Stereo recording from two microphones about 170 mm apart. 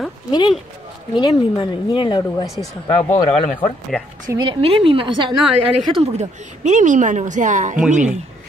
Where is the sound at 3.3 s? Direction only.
40° left (ahead or behind).